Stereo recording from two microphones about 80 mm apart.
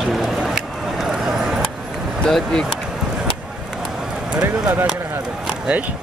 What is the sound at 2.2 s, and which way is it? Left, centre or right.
Speech, centre.